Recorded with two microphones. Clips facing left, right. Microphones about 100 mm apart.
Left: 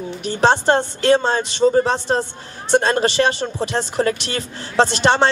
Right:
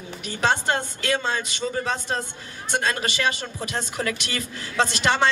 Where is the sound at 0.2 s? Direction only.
30° left (ahead or behind).